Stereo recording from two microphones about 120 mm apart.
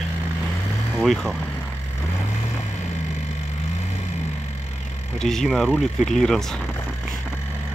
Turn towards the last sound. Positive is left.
turn(degrees=5)  # may be behind; listen again after turning